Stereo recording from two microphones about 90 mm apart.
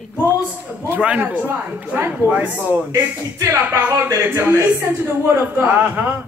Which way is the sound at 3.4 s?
30° right (ahead or behind).